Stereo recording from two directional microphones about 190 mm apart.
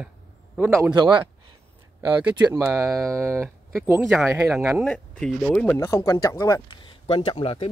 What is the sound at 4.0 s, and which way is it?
A man's voice, centre (ahead or behind).